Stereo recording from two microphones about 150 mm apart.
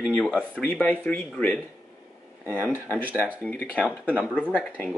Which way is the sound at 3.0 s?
10° right (ahead or behind).